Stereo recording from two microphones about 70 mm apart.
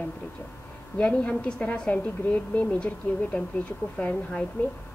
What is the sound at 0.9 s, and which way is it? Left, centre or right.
A woman's voice, centre.